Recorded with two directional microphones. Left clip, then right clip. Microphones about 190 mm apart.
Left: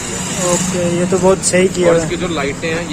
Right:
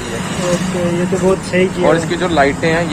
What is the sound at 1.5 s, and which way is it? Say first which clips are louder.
Speech: even; 35° left (ahead or behind).